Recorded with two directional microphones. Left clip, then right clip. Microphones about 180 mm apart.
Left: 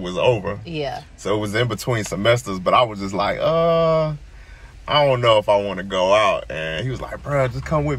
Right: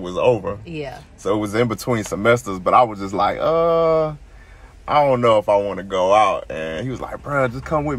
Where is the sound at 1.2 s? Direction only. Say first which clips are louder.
Right 2 dB; 20° right (ahead or behind).